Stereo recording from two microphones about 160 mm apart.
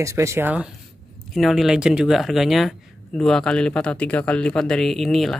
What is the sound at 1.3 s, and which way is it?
A woman's voice, centre (ahead or behind).